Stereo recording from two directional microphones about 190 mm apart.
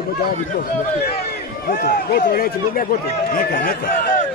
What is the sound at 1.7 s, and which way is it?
A man's voice, 50° left (ahead or behind).